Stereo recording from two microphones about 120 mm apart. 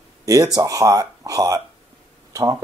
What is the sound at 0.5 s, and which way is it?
Speech, 30° right (ahead or behind).